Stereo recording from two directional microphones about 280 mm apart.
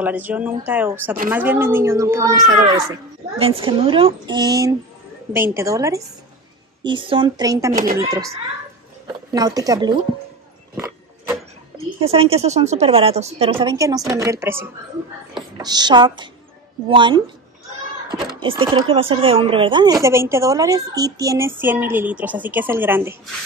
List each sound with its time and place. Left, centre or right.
0.0 s speech: centre
7.7 s speech: right
9.0 s speech: centre
12.0 s a woman's voice: right
18.2 s speech: centre